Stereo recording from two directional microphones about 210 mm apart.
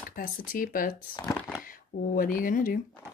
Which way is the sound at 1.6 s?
40° left (ahead or behind).